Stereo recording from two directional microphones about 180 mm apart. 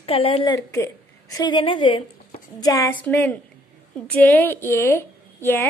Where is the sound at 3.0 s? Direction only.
10° left (ahead or behind).